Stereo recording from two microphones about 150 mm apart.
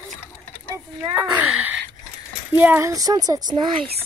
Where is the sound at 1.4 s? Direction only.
10° right (ahead or behind); by 3.8 s 25° right (ahead or behind).